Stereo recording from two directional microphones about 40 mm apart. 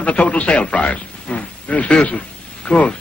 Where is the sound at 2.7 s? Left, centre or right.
Centre.